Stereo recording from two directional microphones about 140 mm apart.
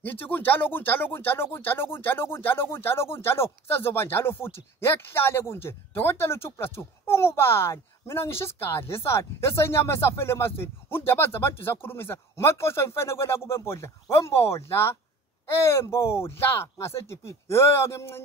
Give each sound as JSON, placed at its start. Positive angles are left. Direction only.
{"t": 0.0, "sound": "speech", "side_deg": 15}